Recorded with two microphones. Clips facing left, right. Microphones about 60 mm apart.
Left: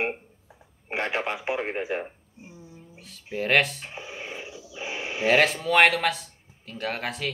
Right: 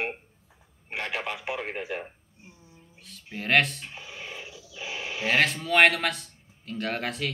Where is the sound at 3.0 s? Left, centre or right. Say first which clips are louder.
Left 6 dB; centre.